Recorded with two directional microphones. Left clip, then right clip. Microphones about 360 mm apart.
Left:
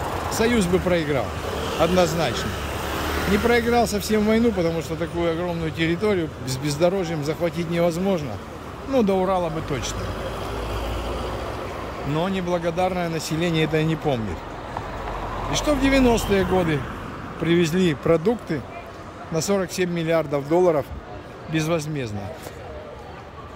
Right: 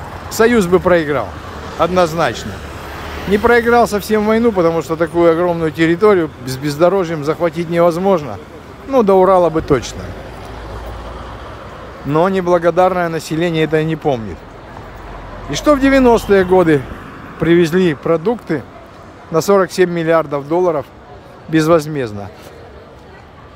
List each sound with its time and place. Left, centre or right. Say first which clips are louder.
0.4 s speech: right 11 dB; centre
1.5 s vehicle: left 2 dB; left
2.0 s speech: right 7 dB; centre
3.4 s speech: right 10 dB; centre
12.2 s speech: right 12 dB; centre
15.5 s speech: right 9 dB; centre